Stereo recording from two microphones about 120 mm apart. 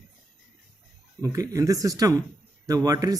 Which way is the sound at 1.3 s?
25° right (ahead or behind).